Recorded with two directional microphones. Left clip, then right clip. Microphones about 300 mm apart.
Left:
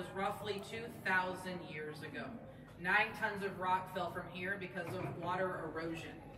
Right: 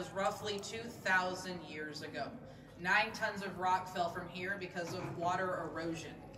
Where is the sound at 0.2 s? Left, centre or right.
Centre.